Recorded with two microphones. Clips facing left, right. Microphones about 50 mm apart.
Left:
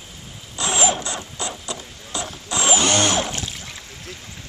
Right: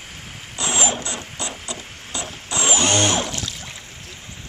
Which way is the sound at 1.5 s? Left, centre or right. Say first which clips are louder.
Even; right.